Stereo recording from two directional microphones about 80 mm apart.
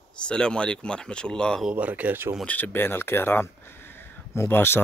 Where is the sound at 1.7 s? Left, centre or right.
Centre.